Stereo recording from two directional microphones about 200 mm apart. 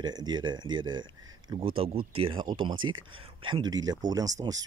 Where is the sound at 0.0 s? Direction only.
20° right (ahead or behind).